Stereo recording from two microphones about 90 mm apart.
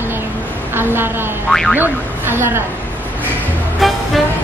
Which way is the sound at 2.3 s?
25° right (ahead or behind).